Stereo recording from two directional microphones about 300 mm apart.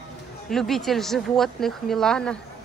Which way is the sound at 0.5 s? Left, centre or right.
Centre.